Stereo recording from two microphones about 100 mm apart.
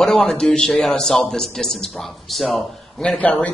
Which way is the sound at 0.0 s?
5° left (ahead or behind).